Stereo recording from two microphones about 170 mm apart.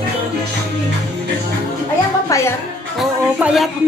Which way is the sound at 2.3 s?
15° left (ahead or behind).